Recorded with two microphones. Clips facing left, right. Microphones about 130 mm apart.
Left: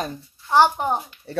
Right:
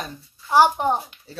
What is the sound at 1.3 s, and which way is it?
Speech, 65° left (ahead or behind).